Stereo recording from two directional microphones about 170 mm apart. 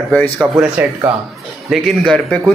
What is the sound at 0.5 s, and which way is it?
A man's voice, 10° right (ahead or behind).